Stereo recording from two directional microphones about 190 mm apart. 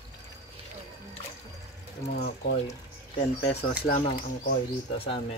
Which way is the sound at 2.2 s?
55° left (ahead or behind).